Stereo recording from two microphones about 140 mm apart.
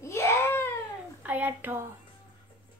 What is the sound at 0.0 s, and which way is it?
Cat, 20° left (ahead or behind).